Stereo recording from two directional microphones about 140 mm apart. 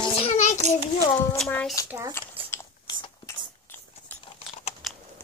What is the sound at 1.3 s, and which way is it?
Speech, 5° left (ahead or behind).